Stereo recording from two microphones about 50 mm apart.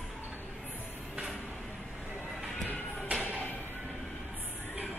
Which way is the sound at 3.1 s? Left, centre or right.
Right.